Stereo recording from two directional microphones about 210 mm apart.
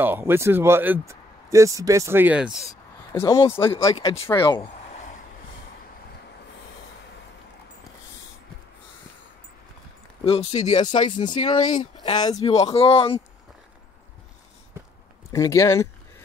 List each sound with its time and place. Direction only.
0.0 s speech: 10° right (ahead or behind)
3.1 s speech: 15° left (ahead or behind)
4.0 s speech: 25° left (ahead or behind)
10.2 s speech: 30° left (ahead or behind)
15.3 s speech: 15° left (ahead or behind)